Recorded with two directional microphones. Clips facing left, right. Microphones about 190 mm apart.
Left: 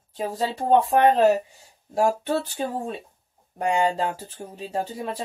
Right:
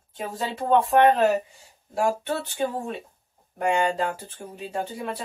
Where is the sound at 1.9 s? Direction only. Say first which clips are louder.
Left 3 dB; 30° left (ahead or behind).